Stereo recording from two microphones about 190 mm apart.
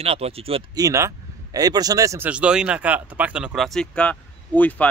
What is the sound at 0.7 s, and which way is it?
Speech, 15° right (ahead or behind).